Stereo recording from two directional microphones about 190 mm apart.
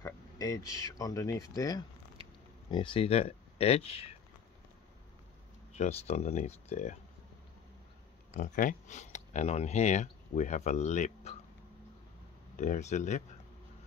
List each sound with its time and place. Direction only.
0.0 s speech: 15° left (ahead or behind)
5.7 s speech: 35° left (ahead or behind)
8.4 s speech: 45° left (ahead or behind)
12.5 s speech: 40° left (ahead or behind)